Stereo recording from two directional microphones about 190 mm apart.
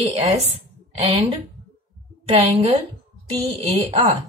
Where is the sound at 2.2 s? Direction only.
30° right (ahead or behind).